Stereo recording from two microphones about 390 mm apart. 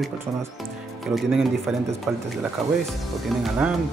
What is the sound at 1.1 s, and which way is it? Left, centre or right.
Speech, centre.